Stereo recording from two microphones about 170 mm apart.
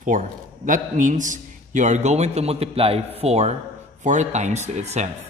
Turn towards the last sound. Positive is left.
turn(degrees=-40)  # may be behind; listen again after turning